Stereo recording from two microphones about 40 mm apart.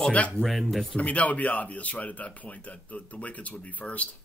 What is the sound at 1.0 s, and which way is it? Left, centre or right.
A man's voice, left.